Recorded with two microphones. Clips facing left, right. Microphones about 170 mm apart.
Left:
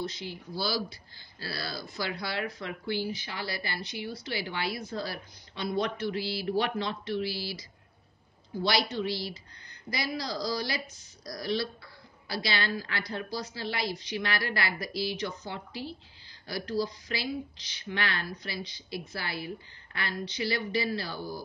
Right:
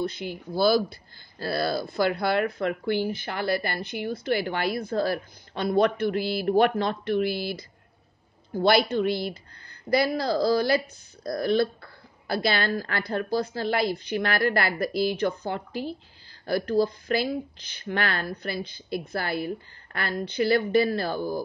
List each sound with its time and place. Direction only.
0.0 s speech: 55° right (ahead or behind)